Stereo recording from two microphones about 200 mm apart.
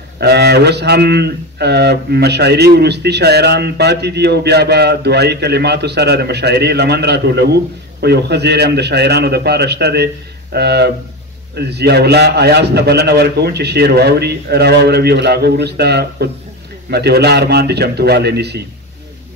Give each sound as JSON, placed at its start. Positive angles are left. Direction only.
{"t": 0.2, "sound": "speech", "side_deg": -55}